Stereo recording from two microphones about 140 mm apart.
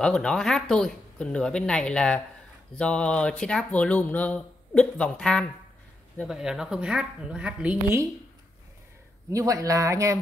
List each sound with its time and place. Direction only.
0.0 s speech: 5° left (ahead or behind)
6.2 s speech: 5° right (ahead or behind)
9.3 s speech: 25° right (ahead or behind)